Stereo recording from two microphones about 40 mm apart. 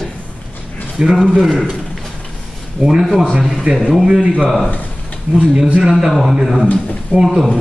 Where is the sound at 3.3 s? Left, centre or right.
Right.